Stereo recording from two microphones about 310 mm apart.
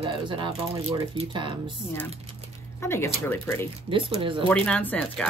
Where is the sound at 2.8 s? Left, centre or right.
Centre.